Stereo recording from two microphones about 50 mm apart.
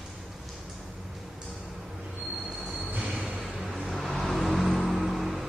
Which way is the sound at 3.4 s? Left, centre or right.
Centre.